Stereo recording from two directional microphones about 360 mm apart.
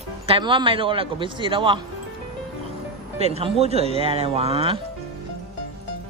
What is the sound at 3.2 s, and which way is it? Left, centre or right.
A man's voice, centre.